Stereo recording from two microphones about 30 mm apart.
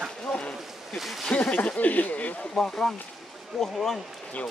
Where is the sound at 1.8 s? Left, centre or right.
Left.